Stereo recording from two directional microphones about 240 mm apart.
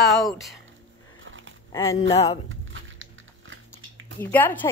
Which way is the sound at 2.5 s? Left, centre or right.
Right.